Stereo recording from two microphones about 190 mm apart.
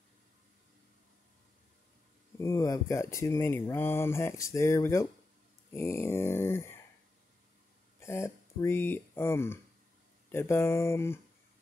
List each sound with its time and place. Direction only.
2.3 s speech: 15° left (ahead or behind)
8.0 s speech: 15° left (ahead or behind)